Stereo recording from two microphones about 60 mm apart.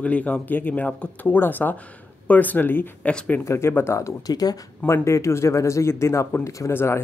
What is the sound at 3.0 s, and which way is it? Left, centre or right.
Speech, centre.